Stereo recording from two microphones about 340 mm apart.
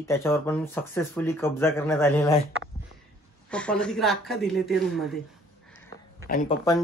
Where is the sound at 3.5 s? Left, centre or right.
Centre.